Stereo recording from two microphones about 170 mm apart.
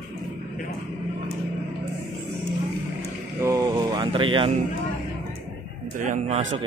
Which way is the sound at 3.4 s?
20° right (ahead or behind).